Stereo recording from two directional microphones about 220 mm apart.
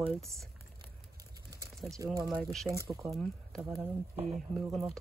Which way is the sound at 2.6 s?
15° right (ahead or behind).